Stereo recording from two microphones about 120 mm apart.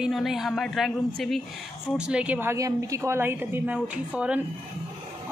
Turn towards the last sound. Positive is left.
turn(degrees=-10)  # may be behind; listen again after turning